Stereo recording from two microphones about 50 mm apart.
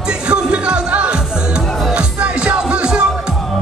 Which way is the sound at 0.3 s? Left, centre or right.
Right.